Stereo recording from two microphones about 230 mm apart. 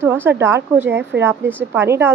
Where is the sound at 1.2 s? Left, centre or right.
Centre.